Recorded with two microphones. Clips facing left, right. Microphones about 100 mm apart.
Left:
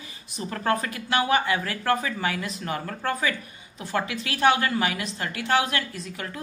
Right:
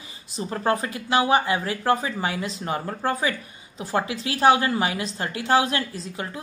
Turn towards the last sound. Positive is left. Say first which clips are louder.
# right 2 dB
turn(degrees=-25)  # may be behind; listen again after turning